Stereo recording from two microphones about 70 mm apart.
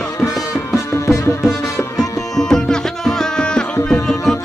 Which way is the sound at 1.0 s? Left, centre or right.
Left.